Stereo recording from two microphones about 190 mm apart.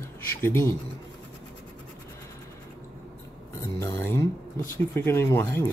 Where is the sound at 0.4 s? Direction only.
10° left (ahead or behind).